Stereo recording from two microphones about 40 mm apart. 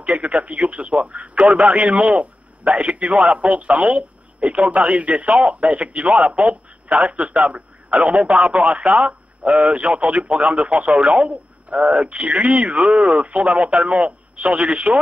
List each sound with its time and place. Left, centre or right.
0.0 s a man's voice: right